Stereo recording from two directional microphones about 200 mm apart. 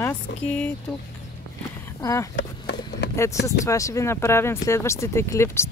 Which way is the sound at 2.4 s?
60° left (ahead or behind).